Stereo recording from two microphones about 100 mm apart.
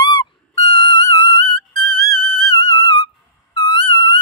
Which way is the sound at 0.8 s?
50° left (ahead or behind).